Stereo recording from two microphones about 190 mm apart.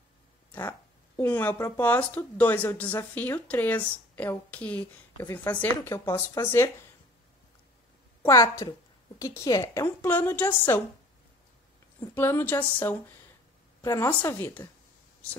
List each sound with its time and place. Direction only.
0.5 s speech: 10° left (ahead or behind)
8.2 s speech: 15° left (ahead or behind)
12.0 s speech: 10° left (ahead or behind)